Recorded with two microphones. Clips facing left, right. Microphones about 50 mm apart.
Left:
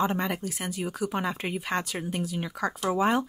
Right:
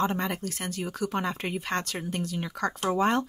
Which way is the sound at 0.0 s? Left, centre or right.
Centre.